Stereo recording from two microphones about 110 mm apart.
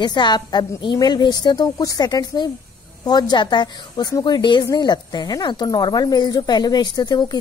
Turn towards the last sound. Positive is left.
turn(degrees=40)  # may be behind; listen again after turning